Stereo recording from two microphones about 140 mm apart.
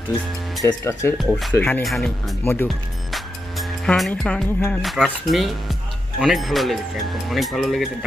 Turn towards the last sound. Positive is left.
turn(degrees=0)  # may be behind; listen again after turning